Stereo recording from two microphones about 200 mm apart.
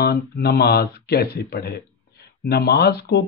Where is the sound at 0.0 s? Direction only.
50° left (ahead or behind).